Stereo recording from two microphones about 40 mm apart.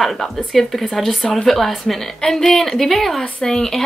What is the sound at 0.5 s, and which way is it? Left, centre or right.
Speech, centre.